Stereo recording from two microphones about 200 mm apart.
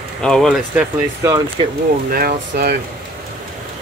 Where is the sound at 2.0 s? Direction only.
45° right (ahead or behind).